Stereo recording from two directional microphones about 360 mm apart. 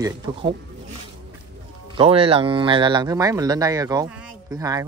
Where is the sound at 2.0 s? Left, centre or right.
Centre.